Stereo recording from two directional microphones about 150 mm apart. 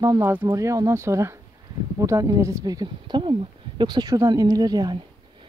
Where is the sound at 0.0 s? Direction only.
20° right (ahead or behind).